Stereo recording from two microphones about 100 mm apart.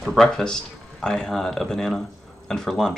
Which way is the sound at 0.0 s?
5° left (ahead or behind).